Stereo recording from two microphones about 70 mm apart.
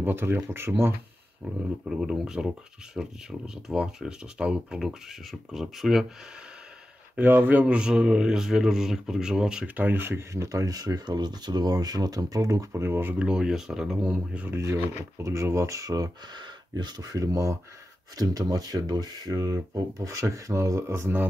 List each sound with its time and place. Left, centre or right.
0.0 s speech: right
1.4 s speech: centre
7.2 s speech: right; by 9.7 s centre
9.8 s speech: right
12.7 s speech: right
13.2 s speech: centre
14.6 s speech: right